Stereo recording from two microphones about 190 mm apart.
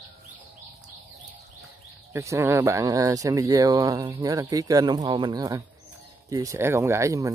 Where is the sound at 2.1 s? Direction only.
15° right (ahead or behind).